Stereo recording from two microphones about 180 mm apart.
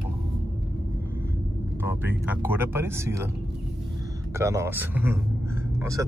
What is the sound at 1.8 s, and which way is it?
Speech, 10° right (ahead or behind).